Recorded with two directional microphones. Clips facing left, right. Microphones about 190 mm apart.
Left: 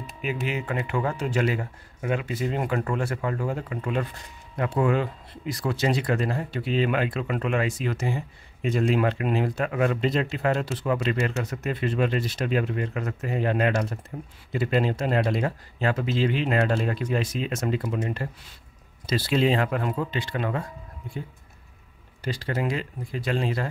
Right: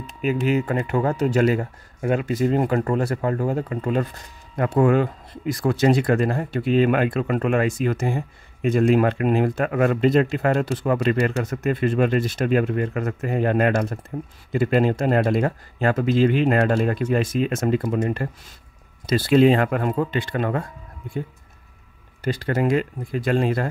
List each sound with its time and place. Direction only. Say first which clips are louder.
0.2 s speech: right 8 dB; 40° right (ahead or behind)
22.2 s speech: right 6 dB; 50° right (ahead or behind)